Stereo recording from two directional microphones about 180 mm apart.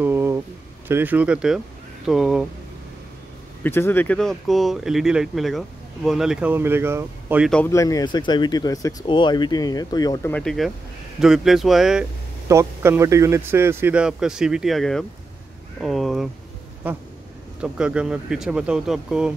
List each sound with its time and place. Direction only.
0.0 s a sound: 10° right (ahead or behind)
0.8 s speech: 10° right (ahead or behind)
3.6 s speech: 10° left (ahead or behind); by 7.4 s 10° right (ahead or behind)
7.4 s speech: 5° left (ahead or behind)
7.7 s speech: 20° left (ahead or behind)
10.3 s speech: centre (ahead or behind)
12.4 s speech: 15° right (ahead or behind)
17.6 s speech: 5° right (ahead or behind)